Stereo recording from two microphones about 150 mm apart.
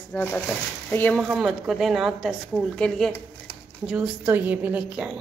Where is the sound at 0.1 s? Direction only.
15° left (ahead or behind).